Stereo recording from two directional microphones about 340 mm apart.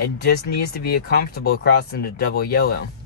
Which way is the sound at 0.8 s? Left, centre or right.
Left.